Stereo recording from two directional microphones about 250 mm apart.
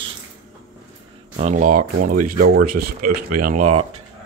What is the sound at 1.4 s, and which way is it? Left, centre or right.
Speech, right.